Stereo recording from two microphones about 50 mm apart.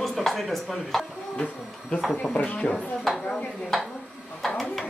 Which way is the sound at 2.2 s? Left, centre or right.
Centre.